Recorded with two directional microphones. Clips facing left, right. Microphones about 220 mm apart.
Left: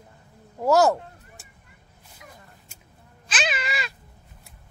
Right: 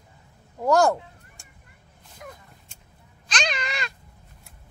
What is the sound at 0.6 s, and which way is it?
Speech, 5° left (ahead or behind).